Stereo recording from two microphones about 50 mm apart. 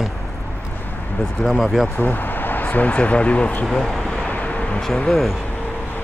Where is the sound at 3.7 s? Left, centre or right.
Centre.